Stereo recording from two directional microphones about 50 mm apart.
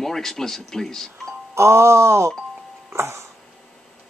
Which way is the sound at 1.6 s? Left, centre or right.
Right.